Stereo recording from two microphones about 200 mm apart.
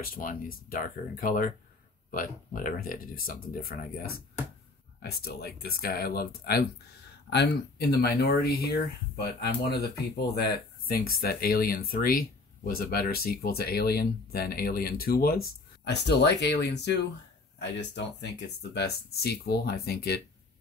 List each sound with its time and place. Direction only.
0.0 s speech: 45° left (ahead or behind)
15.4 s speech: 60° left (ahead or behind)